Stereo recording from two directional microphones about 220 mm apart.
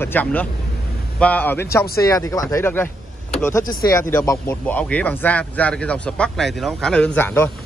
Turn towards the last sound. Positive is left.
turn(degrees=10)  # may be behind; listen again after turning